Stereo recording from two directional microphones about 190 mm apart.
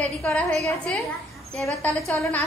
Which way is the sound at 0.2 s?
5° left (ahead or behind).